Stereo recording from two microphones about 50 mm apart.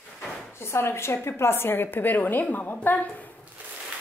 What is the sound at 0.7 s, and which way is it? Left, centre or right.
A woman's voice, left.